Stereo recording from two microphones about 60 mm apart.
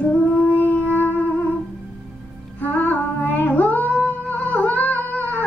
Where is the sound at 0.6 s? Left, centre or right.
Left.